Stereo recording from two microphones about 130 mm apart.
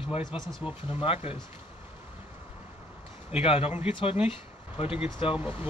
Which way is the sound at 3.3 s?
50° left (ahead or behind).